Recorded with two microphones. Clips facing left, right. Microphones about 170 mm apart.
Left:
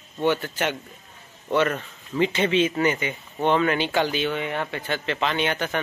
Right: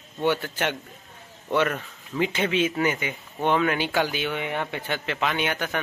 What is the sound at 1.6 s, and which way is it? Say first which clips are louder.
Speech: left 2 dB; centre (ahead or behind).